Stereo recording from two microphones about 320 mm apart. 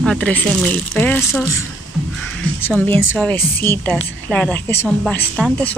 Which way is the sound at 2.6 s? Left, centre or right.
Centre.